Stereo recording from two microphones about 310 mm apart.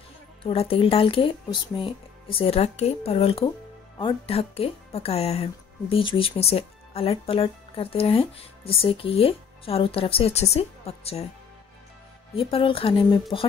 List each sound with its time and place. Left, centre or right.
0.4 s speech: centre
12.4 s speech: centre